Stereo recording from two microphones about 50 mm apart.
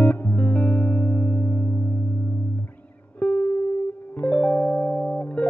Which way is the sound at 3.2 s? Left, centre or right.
Left.